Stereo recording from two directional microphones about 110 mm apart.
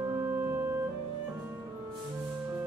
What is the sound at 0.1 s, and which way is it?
Music, 20° right (ahead or behind).